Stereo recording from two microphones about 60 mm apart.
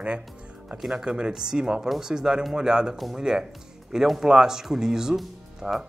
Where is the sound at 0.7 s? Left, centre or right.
Centre.